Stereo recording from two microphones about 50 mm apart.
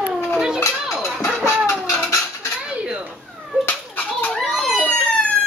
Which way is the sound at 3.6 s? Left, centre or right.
Left.